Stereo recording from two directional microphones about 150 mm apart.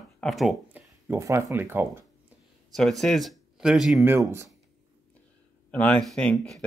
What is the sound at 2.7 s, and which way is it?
Speech, centre (ahead or behind).